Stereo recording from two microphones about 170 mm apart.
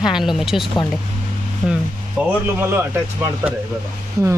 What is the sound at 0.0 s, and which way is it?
Speech, centre (ahead or behind).